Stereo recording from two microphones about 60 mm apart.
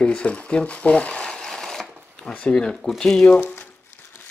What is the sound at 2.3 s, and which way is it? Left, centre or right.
Speech, centre.